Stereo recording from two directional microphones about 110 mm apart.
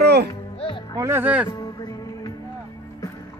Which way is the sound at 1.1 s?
15° right (ahead or behind).